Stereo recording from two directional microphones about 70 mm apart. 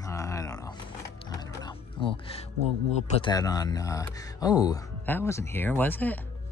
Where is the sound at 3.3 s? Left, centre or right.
Left.